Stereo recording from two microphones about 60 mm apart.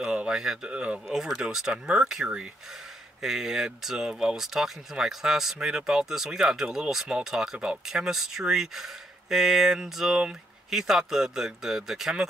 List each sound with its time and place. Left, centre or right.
0.0 s speech: centre
0.7 s speech: centre
1.1 s speech: centre